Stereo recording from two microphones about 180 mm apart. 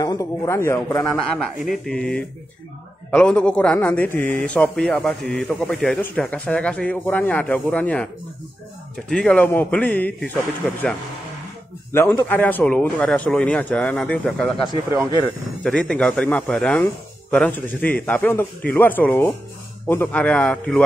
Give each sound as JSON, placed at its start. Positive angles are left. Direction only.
{"t": 0.0, "sound": "a man's voice", "side_deg": 20}
{"t": 1.7, "sound": "a man's voice", "side_deg": 5}
{"t": 11.9, "sound": "a man's voice", "side_deg": 10}
{"t": 15.6, "sound": "a man's voice", "side_deg": 5}